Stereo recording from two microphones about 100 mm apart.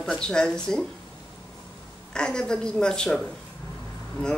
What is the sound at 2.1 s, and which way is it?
Speech, 10° left (ahead or behind).